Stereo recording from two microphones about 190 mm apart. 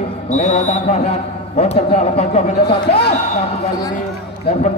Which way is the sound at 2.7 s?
60° left (ahead or behind).